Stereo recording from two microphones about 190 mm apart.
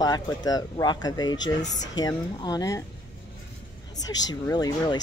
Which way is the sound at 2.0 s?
20° left (ahead or behind).